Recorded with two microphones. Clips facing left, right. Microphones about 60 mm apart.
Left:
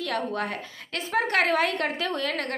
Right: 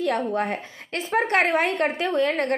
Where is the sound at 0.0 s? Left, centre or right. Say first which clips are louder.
Right 5 dB; right.